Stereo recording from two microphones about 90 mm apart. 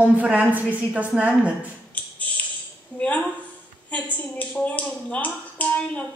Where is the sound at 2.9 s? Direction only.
15° left (ahead or behind).